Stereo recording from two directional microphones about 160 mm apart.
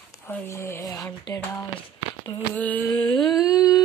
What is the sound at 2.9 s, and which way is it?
Humming, 25° left (ahead or behind).